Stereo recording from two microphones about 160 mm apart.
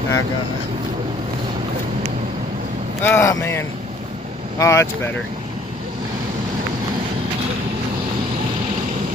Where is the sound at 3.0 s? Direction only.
15° left (ahead or behind).